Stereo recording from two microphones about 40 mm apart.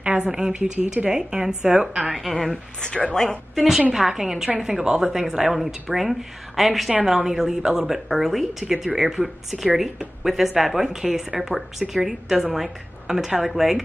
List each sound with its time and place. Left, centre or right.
0.0 s a sound: right
0.3 s a woman's voice: centre
2.0 s speech: centre
2.8 s speech: left
3.5 s speech: centre
4.8 s speech: centre